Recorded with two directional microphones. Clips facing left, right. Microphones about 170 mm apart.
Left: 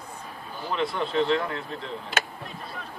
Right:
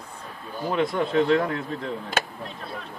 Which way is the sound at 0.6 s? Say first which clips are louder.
Right 4 dB; 45° right (ahead or behind).